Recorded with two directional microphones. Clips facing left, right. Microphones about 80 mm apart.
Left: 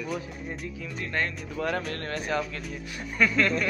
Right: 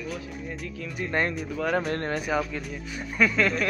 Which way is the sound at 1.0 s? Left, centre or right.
Right.